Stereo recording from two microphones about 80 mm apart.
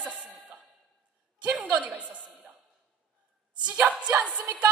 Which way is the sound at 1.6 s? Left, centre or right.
Centre.